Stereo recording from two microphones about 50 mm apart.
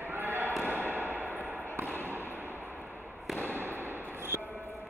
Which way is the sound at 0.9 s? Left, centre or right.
Right.